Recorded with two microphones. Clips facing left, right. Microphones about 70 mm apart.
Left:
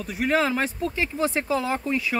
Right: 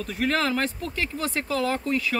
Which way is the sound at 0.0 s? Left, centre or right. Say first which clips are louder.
Left 2 dB; centre.